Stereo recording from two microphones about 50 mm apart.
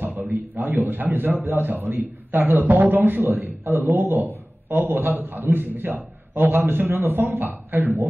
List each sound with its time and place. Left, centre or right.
0.0 s a man's voice: right